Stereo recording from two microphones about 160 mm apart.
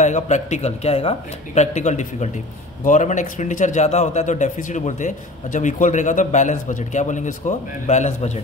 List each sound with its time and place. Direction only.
0.0 s a man's voice: 45° left (ahead or behind)